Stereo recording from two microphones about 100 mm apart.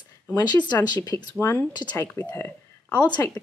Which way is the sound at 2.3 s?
20° left (ahead or behind).